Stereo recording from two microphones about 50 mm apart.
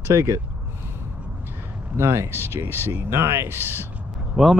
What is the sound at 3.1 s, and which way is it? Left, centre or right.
Speech, right.